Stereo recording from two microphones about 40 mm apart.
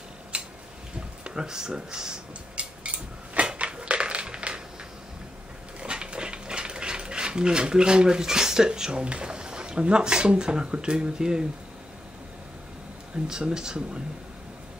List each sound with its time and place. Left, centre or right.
0.3 s tick-tock: right
0.9 s a sound: right
1.8 s speech: centre
3.3 s a sound: right
5.8 s ratchet: right
9.0 s speech: right
13.3 s speech: centre